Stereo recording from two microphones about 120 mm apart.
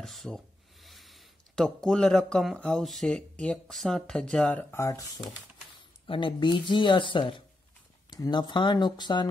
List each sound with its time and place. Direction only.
0.0 s speech: centre (ahead or behind)
4.8 s speech: 30° left (ahead or behind)
6.0 s speech: 45° left (ahead or behind)